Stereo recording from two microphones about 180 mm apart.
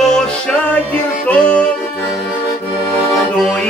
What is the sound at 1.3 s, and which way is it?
Music, 5° left (ahead or behind).